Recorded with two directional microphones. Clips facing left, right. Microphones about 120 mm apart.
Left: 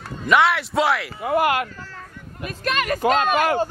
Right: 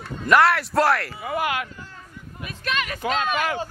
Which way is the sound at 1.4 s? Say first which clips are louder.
Left 4 dB; 60° left (ahead or behind).